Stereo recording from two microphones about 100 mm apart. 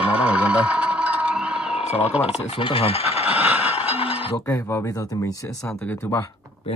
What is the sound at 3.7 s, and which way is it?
Music, 90° left.